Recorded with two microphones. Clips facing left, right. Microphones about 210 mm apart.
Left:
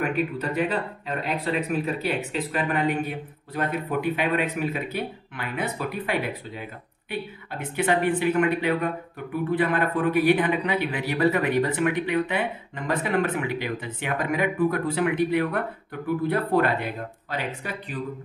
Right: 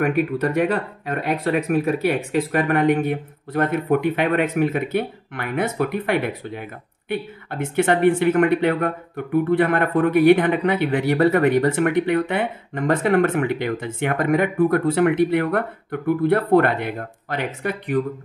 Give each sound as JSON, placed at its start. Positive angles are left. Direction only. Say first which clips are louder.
{"t": 0.0, "sound": "speech", "louder": "right 6 dB", "side_deg": -65}